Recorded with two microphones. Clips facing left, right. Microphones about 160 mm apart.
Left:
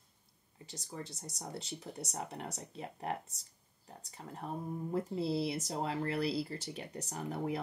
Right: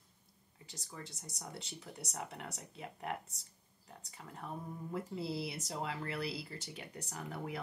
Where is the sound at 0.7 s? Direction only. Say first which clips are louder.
Left 5 dB; 35° left (ahead or behind).